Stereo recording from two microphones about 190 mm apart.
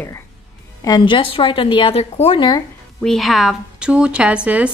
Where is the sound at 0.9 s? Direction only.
25° left (ahead or behind).